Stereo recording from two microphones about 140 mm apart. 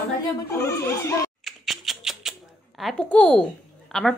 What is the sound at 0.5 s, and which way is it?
Speech, 20° left (ahead or behind).